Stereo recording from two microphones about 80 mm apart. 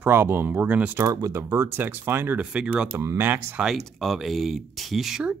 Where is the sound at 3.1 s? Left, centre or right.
Right.